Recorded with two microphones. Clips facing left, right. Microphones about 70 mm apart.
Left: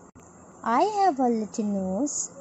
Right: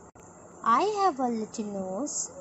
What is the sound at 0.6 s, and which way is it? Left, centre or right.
Speech, left.